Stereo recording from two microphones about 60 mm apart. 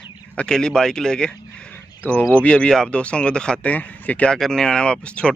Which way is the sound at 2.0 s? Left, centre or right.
Left.